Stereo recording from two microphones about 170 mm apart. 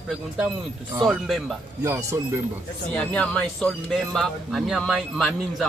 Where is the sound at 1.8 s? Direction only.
15° right (ahead or behind).